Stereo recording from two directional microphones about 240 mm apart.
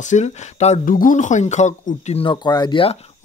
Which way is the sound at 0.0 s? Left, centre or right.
Left.